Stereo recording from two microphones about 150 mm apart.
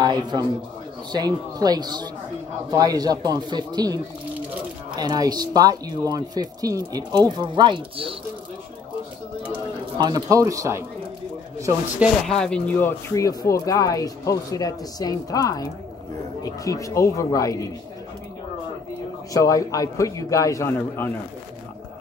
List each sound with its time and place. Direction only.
0.0 s speech: 30° right (ahead or behind)
9.9 s speech: 25° right (ahead or behind)
12.3 s speech: 5° left (ahead or behind); by 17.6 s 20° left (ahead or behind)
19.3 s speech: 20° left (ahead or behind)